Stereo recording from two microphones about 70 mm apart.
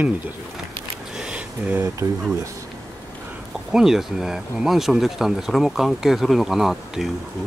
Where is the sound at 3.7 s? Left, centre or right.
Centre.